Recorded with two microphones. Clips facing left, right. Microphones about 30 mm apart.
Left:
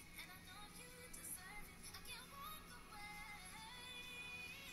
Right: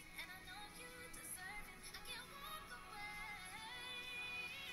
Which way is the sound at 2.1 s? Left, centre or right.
Right.